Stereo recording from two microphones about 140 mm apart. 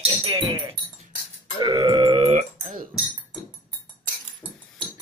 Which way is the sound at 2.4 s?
60° right (ahead or behind).